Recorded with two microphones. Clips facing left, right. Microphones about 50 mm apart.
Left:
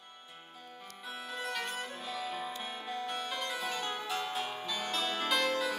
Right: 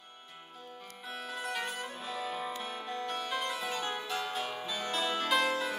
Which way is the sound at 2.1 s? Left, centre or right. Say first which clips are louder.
Right 2 dB; centre.